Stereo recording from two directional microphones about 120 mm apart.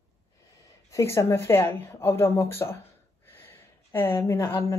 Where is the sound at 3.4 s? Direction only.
20° left (ahead or behind).